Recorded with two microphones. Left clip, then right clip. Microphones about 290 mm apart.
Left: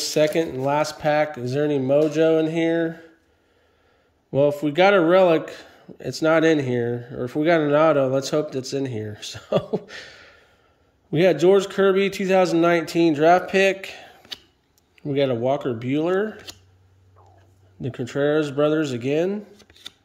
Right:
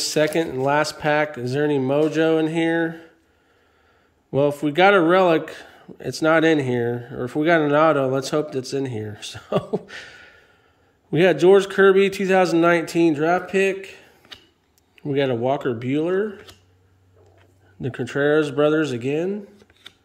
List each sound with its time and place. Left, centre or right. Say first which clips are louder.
0.0 s speech: even; centre
4.3 s speech: left 1 dB; centre
17.7 s speech: right 1 dB; centre
19.6 s shuffling cards: left 4 dB; left